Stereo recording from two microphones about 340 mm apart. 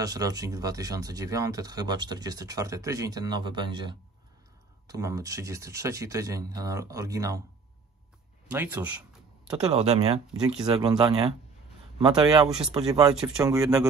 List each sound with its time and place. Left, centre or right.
0.0 s speech: centre
8.5 s speech: centre
9.7 s speech: centre
10.3 s speech: centre